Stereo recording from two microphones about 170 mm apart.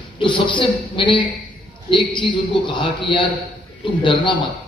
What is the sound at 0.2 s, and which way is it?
A man's voice, 30° left (ahead or behind).